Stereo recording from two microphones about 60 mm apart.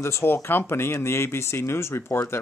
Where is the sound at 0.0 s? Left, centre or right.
Left.